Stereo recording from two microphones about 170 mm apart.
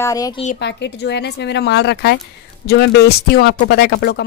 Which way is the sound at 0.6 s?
90° left.